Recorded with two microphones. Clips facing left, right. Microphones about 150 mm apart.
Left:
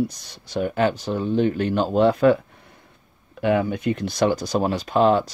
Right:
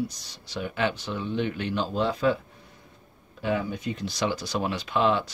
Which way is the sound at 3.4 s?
65° left (ahead or behind).